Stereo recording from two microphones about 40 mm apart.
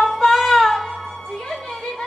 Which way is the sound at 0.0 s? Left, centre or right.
Centre.